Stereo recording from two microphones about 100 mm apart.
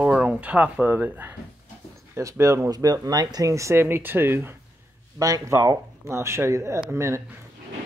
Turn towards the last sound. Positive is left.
turn(degrees=-30)  # may be behind; listen again after turning